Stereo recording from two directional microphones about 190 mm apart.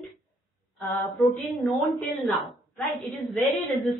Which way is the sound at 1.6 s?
Centre (ahead or behind).